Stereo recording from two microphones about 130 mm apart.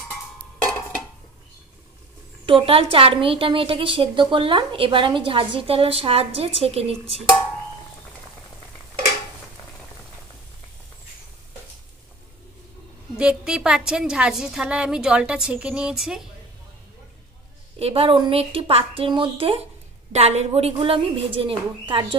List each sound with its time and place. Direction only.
2.4 s a woman's voice: 45° right (ahead or behind)
13.1 s a woman's voice: 5° right (ahead or behind)
17.7 s a woman's voice: 50° right (ahead or behind)
20.1 s a woman's voice: 55° right (ahead or behind)